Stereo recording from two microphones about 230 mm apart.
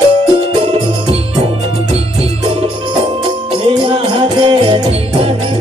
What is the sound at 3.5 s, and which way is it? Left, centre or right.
Music, right.